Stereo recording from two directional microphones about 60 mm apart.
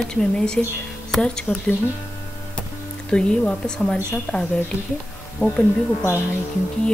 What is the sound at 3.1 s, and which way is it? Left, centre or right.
Speech, centre.